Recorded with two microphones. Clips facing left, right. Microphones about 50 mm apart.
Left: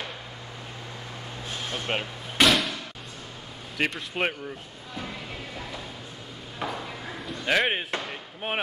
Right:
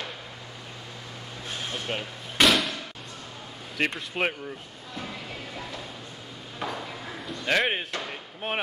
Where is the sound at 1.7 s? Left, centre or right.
Left.